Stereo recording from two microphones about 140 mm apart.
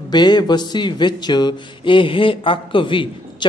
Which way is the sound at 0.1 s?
30° left (ahead or behind).